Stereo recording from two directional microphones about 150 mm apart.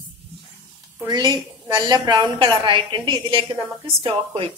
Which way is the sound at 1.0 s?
30° right (ahead or behind).